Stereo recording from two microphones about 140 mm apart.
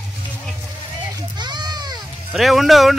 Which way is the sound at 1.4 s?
30° right (ahead or behind).